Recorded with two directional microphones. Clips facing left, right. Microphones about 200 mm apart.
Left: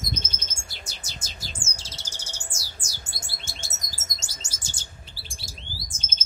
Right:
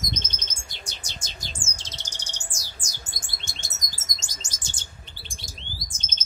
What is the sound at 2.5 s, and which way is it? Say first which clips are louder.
Chirp: even; 5° left (ahead or behind).